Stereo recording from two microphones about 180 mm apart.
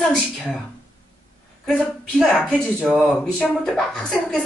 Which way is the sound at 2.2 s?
5° left (ahead or behind).